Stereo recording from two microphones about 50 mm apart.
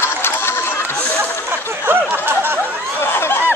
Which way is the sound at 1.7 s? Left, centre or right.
Right.